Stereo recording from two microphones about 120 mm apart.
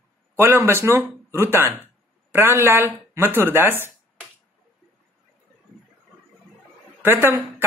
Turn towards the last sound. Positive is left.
turn(degrees=-20)  # may be behind; listen again after turning